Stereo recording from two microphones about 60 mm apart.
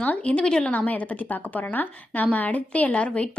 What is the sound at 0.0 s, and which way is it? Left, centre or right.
Speech, left.